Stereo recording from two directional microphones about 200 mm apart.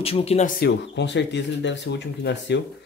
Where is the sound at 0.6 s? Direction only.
60° left (ahead or behind).